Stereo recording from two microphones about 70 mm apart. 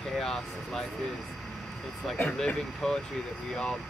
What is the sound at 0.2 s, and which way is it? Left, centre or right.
Speech, centre.